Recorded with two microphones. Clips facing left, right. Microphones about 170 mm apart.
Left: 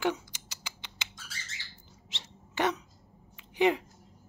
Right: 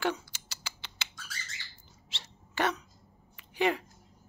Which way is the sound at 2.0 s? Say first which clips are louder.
Left 1 dB; 20° left (ahead or behind).